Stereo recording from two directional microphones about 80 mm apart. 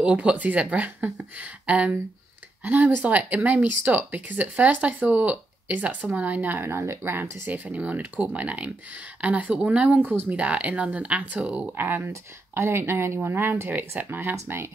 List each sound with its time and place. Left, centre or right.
0.0 s speech: centre; by 14.7 s right